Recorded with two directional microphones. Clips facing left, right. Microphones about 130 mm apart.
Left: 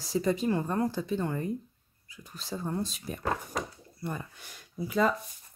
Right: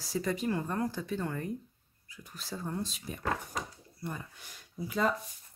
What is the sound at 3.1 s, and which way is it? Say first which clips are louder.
Speech: left 4 dB; 45° left (ahead or behind).